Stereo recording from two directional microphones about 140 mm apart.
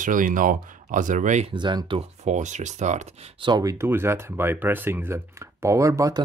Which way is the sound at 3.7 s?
15° right (ahead or behind).